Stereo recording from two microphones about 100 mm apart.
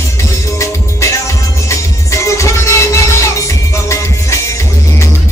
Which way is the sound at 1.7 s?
30° left (ahead or behind).